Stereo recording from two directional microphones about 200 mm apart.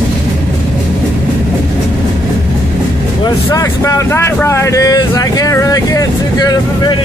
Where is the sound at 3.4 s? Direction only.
15° left (ahead or behind).